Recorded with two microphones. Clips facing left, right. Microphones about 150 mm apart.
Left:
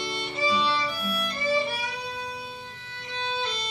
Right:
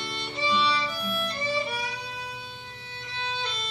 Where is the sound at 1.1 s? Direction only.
25° right (ahead or behind).